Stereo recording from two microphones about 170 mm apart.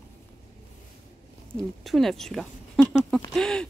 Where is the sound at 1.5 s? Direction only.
Centre (ahead or behind).